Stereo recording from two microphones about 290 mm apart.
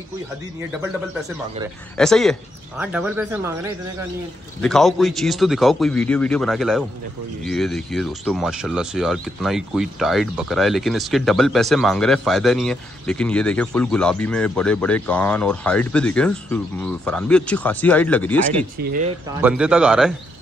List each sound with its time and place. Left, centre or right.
2.0 s speech: centre
4.6 s speech: centre
18.8 s speech: right
19.4 s speech: centre